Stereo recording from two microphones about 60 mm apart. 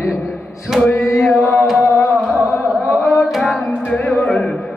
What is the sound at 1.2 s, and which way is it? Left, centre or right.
Chant, centre.